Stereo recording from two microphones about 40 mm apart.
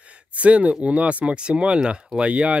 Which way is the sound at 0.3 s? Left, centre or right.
Right.